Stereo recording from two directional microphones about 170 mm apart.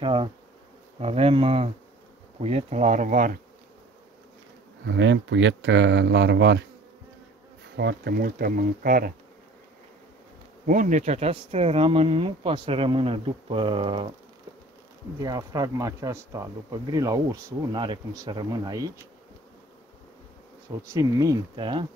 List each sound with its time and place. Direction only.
0.0 s speech: 30° right (ahead or behind); by 3.3 s 50° right (ahead or behind)
4.8 s speech: 90° right
7.7 s speech: 75° right (ahead or behind); by 9.1 s 55° right (ahead or behind)
10.7 s speech: 50° right (ahead or behind); by 14.1 s 30° right (ahead or behind)
15.1 s speech: 20° right (ahead or behind)
20.9 s speech: 20° right (ahead or behind)